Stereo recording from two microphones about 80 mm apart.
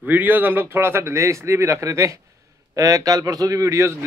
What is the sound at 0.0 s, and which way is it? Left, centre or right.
A man's voice, right.